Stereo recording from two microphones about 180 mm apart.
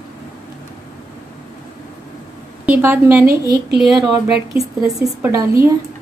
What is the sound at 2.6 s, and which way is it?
Speech, 10° right (ahead or behind).